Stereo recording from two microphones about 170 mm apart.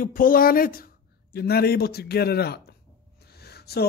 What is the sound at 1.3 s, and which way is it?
A man's voice, 70° left (ahead or behind).